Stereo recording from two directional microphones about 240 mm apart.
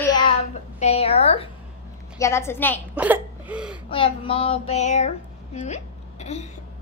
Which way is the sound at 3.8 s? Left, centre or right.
Left.